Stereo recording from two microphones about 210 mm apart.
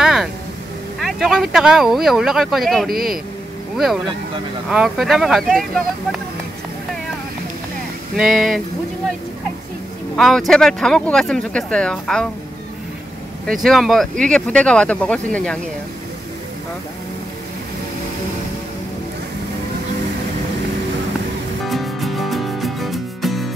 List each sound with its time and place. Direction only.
0.0 s vehicle: centre (ahead or behind)
0.9 s speech: centre (ahead or behind)
2.9 s speech: 45° right (ahead or behind)
3.7 s speech: centre (ahead or behind)
8.2 s speech: centre (ahead or behind)
10.1 s speech: centre (ahead or behind)
13.5 s speech: centre (ahead or behind)
21.6 s music: centre (ahead or behind)